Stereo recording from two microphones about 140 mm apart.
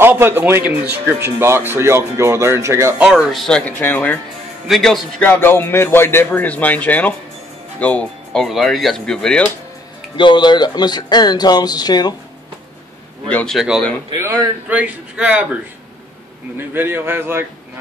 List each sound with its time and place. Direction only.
0.0 s a man's voice: 15° right (ahead or behind)
3.0 s speech: 5° right (ahead or behind); by 4.2 s 15° left (ahead or behind)
4.6 s speech: centre (ahead or behind)
5.2 s speech: 15° left (ahead or behind)
10.1 s speech: 35° left (ahead or behind)
13.3 s speech: 10° left (ahead or behind)
13.6 s speech: centre (ahead or behind)
14.1 s a man's voice: 20° right (ahead or behind)
16.5 s a man's voice: 15° right (ahead or behind)